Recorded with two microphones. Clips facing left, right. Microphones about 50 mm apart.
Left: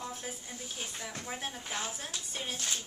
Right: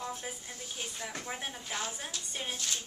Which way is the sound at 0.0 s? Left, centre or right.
Centre.